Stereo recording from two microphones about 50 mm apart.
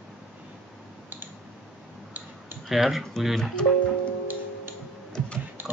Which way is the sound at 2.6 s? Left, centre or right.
Centre.